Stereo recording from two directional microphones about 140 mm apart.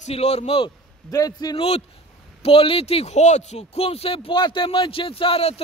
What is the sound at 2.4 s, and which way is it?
A man's voice, 40° left (ahead or behind).